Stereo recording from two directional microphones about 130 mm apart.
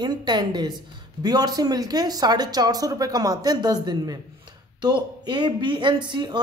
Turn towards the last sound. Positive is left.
turn(degrees=-35)  # may be behind; listen again after turning